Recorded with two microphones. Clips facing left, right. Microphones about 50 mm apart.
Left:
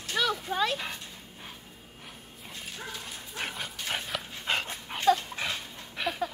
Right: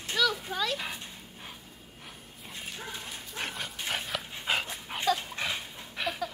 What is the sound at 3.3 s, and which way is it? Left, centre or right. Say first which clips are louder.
Dog: left 1 dB; centre.